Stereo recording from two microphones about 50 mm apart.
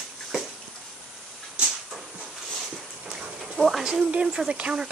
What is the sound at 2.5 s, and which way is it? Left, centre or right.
Dog, centre.